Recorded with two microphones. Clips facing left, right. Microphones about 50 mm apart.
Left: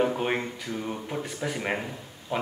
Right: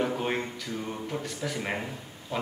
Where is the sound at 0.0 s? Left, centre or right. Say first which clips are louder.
Left 3 dB; centre.